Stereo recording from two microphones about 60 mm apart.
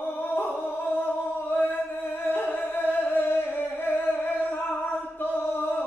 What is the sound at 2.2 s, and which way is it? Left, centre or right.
Singing, left.